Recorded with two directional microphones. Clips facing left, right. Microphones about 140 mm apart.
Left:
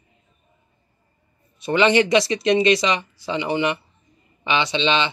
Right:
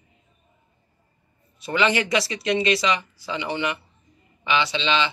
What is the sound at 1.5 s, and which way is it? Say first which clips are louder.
Speech: left 5 dB; 20° left (ahead or behind).